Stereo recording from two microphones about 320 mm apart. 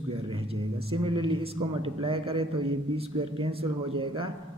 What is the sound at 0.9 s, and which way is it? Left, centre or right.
A man's voice, centre.